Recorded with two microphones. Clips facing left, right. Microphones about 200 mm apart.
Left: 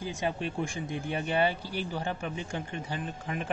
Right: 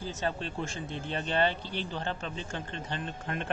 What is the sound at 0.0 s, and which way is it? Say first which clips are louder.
Speech: left 2 dB; 15° left (ahead or behind).